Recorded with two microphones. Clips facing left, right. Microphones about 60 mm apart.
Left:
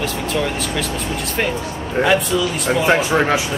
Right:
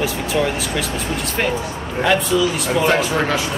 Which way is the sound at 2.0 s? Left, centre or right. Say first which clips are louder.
Even; centre.